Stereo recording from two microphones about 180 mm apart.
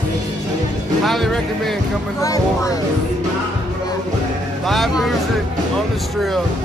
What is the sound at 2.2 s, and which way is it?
Speech, 20° left (ahead or behind).